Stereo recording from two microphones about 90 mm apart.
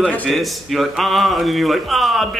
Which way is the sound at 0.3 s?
Centre (ahead or behind).